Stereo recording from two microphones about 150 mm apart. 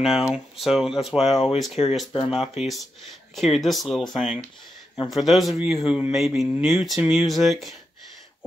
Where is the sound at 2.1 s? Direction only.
30° left (ahead or behind).